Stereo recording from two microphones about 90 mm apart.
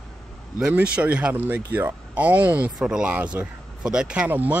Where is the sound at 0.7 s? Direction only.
15° right (ahead or behind).